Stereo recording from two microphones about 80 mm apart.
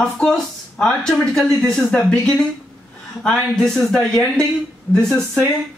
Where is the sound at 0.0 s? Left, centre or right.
Centre.